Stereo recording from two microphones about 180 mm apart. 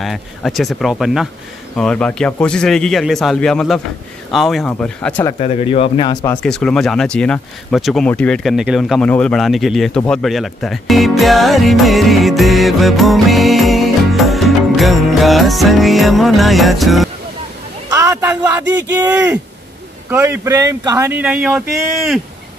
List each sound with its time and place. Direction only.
0.0 s speech: centre (ahead or behind)
5.4 s speech: 35° left (ahead or behind)
6.4 s speech: 5° left (ahead or behind)
17.8 s a sound: 20° right (ahead or behind)
18.8 s speech: 10° right (ahead or behind)